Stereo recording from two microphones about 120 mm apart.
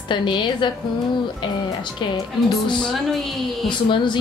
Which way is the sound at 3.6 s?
40° left (ahead or behind).